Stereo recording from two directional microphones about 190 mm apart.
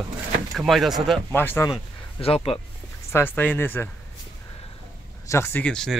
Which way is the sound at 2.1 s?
30° left (ahead or behind).